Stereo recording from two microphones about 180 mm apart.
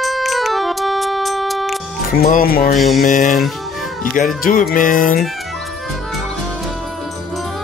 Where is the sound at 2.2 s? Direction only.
55° left (ahead or behind).